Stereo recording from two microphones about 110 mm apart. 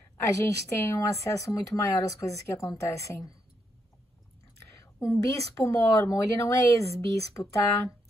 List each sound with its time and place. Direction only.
0.2 s a woman's voice: 25° left (ahead or behind)
4.9 s a woman's voice: 25° left (ahead or behind)